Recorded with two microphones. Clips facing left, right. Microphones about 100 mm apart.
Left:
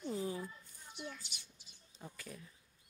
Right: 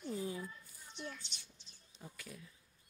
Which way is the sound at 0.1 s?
30° left (ahead or behind).